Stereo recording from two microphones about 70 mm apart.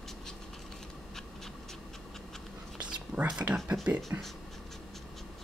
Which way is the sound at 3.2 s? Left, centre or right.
Centre.